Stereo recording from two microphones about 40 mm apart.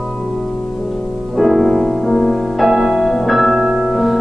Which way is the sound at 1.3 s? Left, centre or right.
Centre.